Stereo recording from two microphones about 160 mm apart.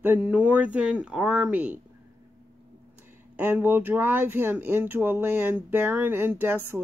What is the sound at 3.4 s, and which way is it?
Speech, 10° right (ahead or behind).